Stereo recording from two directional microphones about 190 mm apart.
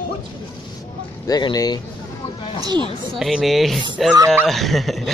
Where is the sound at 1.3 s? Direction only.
20° left (ahead or behind).